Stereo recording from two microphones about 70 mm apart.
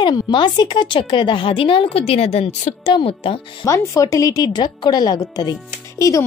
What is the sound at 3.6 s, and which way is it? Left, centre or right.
A woman's voice, left.